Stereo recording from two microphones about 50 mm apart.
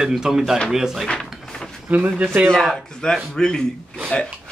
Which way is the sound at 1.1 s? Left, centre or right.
Centre.